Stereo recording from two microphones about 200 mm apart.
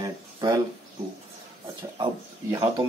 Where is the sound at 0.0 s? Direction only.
20° right (ahead or behind).